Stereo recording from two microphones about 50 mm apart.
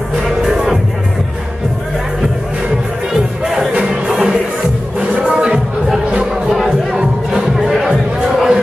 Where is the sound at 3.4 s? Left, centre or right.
Centre.